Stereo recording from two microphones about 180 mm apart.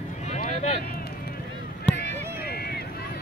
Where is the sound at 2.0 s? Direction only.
60° left (ahead or behind).